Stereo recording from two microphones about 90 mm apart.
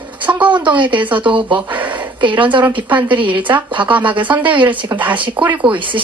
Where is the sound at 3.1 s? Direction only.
65° right (ahead or behind).